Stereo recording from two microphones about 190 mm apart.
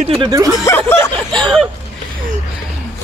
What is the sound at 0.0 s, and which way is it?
Speech, 25° right (ahead or behind).